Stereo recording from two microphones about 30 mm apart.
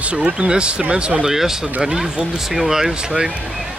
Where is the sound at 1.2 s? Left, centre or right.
Centre.